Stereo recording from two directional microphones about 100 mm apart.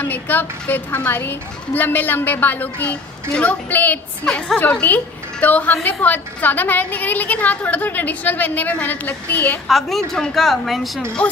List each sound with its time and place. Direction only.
0.0 s a woman's voice: 20° left (ahead or behind)
4.3 s a woman's voice: 5° left (ahead or behind)
4.6 s a woman's voice: 15° left (ahead or behind)
9.7 s a woman's voice: centre (ahead or behind)